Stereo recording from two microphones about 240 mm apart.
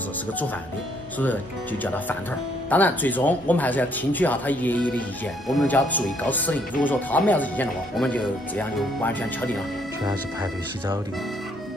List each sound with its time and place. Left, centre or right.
1.2 s speech: centre
10.0 s speech: centre